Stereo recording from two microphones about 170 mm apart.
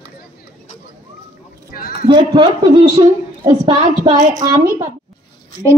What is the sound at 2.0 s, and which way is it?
A woman's voice, 25° right (ahead or behind).